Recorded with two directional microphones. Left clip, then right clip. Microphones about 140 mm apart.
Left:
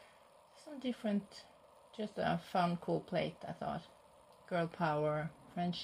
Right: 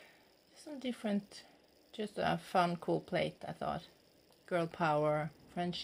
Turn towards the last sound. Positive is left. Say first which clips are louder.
# right 1 dB
turn(degrees=-25)  # may be behind; listen again after turning